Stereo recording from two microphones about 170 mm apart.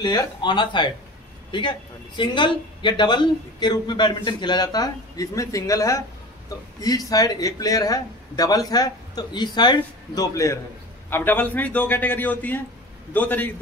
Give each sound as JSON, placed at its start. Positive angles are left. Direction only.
{"t": 0.0, "sound": "a man's voice", "side_deg": 25}
{"t": 2.1, "sound": "a man's voice", "side_deg": 30}
{"t": 7.1, "sound": "a man's voice", "side_deg": 20}